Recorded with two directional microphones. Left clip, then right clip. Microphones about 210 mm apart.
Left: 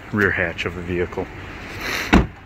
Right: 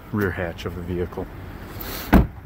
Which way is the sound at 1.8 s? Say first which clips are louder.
Left 10 dB; 10° left (ahead or behind).